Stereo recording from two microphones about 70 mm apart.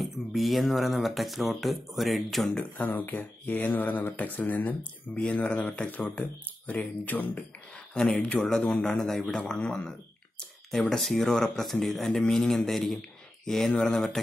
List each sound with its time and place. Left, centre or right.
0.0 s speech: centre
2.5 s speech: left; by 14.2 s centre